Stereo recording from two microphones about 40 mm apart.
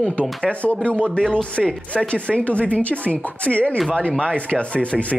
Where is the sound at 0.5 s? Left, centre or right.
Left.